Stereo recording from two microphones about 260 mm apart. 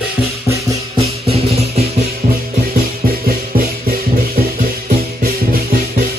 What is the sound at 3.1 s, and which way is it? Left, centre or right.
Music, right.